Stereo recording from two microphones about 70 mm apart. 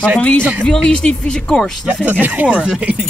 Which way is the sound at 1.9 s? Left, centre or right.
Right.